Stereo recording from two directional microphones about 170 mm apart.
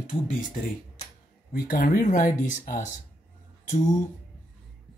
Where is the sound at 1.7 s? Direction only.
50° left (ahead or behind).